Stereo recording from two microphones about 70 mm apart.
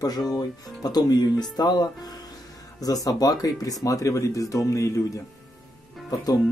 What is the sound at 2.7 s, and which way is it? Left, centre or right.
Speech, left.